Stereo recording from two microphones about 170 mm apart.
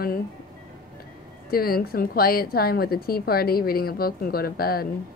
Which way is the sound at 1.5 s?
60° left (ahead or behind).